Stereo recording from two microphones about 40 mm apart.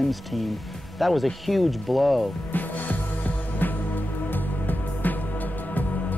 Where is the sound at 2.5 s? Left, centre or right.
Left.